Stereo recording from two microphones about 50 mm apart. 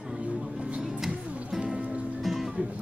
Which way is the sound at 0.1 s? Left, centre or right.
Centre.